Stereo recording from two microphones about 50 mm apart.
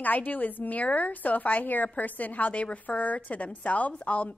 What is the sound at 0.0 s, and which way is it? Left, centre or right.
A woman's voice, left.